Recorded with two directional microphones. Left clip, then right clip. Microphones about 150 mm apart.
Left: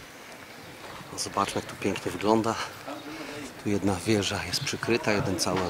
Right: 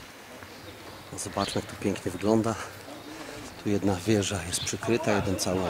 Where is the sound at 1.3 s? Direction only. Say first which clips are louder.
Left 2 dB; 35° right (ahead or behind).